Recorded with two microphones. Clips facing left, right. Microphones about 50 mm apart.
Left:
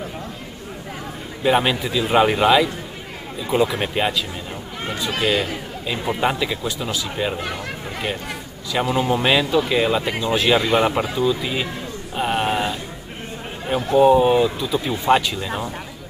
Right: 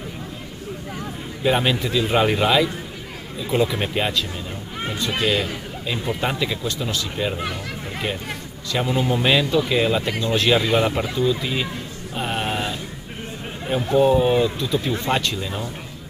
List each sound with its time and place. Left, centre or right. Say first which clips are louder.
1.4 s speech: left 2 dB; centre
5.2 s speech: left 2 dB; centre
8.7 s speech: left 2 dB; centre
12.2 s a sound: left 4 dB; centre
13.7 s speech: left 3 dB; centre